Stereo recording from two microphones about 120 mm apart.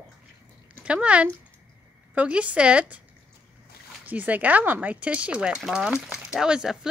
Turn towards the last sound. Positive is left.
turn(degrees=-5)  # may be behind; listen again after turning